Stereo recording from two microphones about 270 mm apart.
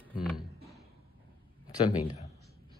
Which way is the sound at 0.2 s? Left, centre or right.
Centre.